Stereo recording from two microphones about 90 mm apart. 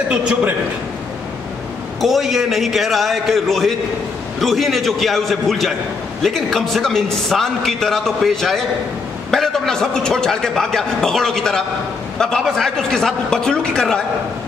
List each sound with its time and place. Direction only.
0.2 s a man's voice: 15° right (ahead or behind)
2.0 s a man's voice: centre (ahead or behind)